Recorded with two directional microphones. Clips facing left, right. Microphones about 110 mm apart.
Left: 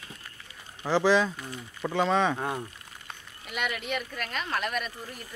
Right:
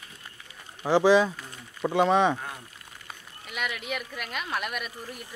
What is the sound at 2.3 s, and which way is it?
Speech, 55° left (ahead or behind).